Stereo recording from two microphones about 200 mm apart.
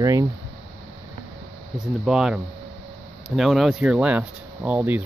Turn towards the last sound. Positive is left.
turn(degrees=-10)  # may be behind; listen again after turning